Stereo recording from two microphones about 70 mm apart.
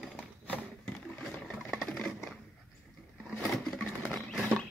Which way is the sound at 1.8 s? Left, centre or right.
Centre.